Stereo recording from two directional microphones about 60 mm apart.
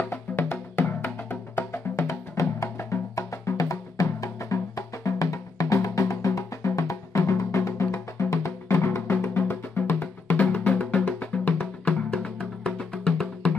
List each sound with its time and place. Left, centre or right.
0.0 s music: left
10.2 s music: left
12.4 s music: centre